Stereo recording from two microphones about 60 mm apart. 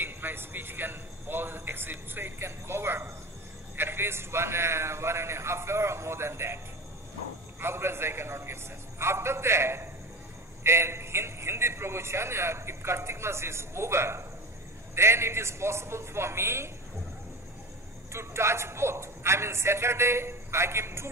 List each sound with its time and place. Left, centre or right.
0.0 s a man's voice: right
7.6 s a man's voice: right
18.1 s a man's voice: right